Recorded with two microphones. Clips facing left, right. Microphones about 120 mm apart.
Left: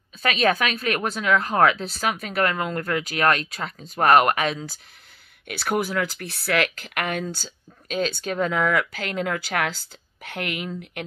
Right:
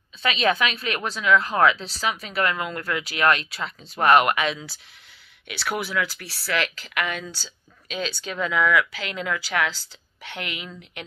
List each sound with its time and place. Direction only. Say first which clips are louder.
0.2 s speech: left 1 dB; 45° left (ahead or behind)